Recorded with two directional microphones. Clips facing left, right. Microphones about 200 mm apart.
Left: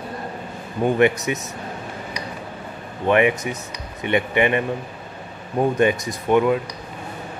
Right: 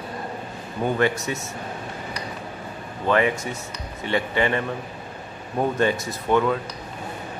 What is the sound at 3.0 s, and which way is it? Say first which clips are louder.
Speech: left 3 dB; 20° left (ahead or behind).